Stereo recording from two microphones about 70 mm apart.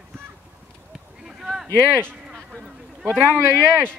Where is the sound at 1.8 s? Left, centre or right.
Right.